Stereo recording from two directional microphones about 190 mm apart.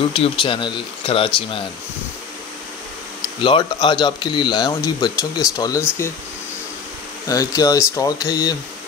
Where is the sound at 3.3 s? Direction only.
25° left (ahead or behind).